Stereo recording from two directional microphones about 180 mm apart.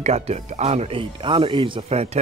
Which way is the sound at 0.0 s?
35° right (ahead or behind).